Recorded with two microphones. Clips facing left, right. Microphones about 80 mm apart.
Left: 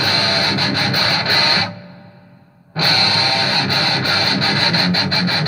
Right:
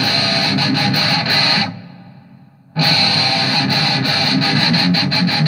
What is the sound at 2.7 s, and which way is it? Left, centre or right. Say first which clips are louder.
Music: right 1 dB; left.